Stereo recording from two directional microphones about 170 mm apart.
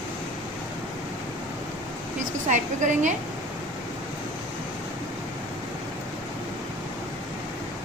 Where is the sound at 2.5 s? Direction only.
45° right (ahead or behind).